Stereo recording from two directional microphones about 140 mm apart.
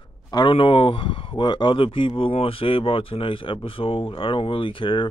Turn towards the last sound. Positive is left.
turn(degrees=35)  # may be behind; listen again after turning